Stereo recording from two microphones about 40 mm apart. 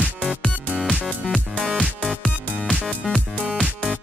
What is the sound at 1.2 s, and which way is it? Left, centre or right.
Music, centre.